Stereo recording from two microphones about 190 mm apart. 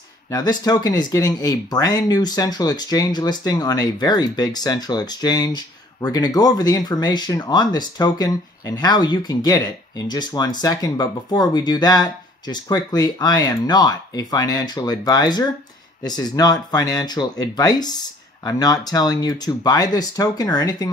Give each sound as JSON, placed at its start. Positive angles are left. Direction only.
{"t": 0.3, "sound": "speech", "side_deg": 20}